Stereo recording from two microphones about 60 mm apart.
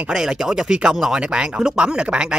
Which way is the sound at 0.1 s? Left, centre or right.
Centre.